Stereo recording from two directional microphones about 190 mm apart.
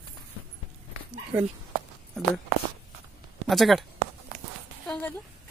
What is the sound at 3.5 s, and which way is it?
Speech, centre (ahead or behind).